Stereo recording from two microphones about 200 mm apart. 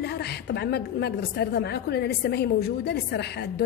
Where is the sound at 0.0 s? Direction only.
55° left (ahead or behind).